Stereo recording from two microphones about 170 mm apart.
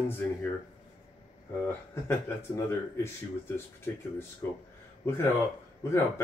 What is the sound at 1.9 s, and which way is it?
Speech, 15° left (ahead or behind).